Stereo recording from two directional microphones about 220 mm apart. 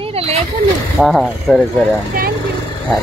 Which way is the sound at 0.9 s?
Centre (ahead or behind).